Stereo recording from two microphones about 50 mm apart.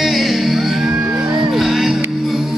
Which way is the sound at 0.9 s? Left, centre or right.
Right.